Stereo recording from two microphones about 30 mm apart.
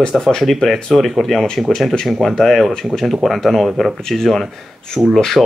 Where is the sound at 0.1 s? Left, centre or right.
Centre.